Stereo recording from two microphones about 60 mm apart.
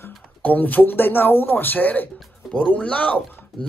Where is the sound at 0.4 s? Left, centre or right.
Left.